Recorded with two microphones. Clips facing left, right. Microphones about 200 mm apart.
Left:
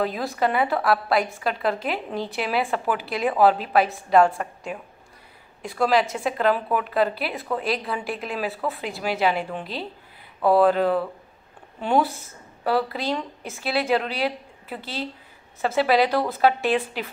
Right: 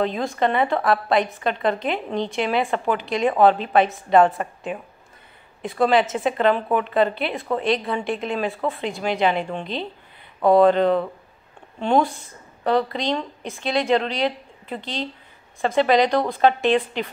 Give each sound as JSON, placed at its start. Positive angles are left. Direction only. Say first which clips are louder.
{"t": 0.0, "sound": "a woman's voice", "louder": "right 2 dB", "side_deg": 5}